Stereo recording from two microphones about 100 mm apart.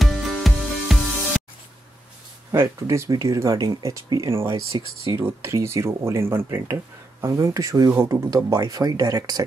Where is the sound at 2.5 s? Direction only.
25° right (ahead or behind).